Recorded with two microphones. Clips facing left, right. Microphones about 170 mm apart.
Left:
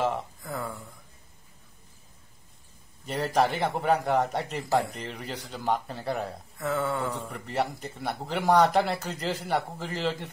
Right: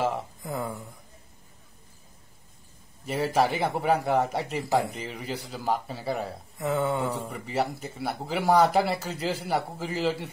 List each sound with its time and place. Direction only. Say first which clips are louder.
0.4 s a sound: right 3 dB; 20° right (ahead or behind)
3.1 s a man's voice: right 1 dB; 5° right (ahead or behind)
6.6 s mantra: right 2 dB; 20° right (ahead or behind)
7.2 s a man's voice: right 1 dB; 5° right (ahead or behind)